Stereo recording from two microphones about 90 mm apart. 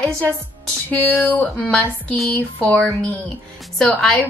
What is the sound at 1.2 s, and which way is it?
Speech, 20° left (ahead or behind).